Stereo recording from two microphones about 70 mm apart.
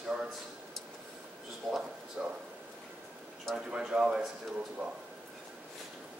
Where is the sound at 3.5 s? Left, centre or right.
Centre.